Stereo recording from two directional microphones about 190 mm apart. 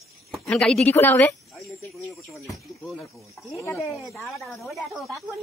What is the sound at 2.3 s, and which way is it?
Speech, 15° left (ahead or behind).